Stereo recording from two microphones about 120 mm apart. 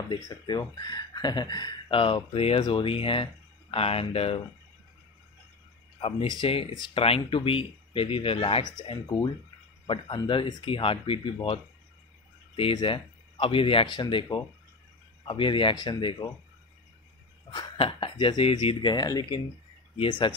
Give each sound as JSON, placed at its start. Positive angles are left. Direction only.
{"t": 0.3, "sound": "speech", "side_deg": 35}
{"t": 5.9, "sound": "speech", "side_deg": 55}
{"t": 9.0, "sound": "speech", "side_deg": 35}
{"t": 12.7, "sound": "speech", "side_deg": 45}
{"t": 17.7, "sound": "speech", "side_deg": 45}